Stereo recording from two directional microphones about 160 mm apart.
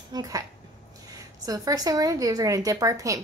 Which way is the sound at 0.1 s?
20° right (ahead or behind).